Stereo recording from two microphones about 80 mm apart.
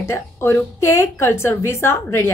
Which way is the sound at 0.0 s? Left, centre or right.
Left.